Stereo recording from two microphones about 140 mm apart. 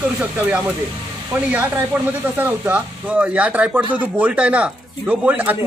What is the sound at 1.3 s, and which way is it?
Speech, 10° right (ahead or behind).